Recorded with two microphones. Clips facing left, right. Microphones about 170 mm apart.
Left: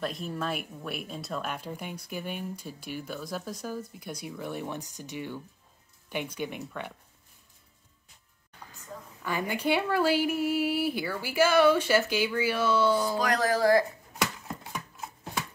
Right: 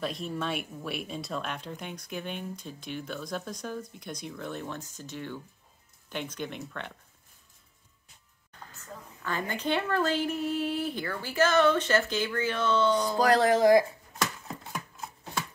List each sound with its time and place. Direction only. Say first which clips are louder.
0.0 s speech: even; centre (ahead or behind)
9.2 s speech: left 2 dB; 10° left (ahead or behind)
13.2 s speech: right 4 dB; 30° right (ahead or behind)
14.6 s a sound: even; 5° left (ahead or behind)